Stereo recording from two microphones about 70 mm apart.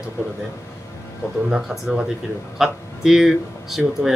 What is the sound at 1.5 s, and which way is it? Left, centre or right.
Speech, centre.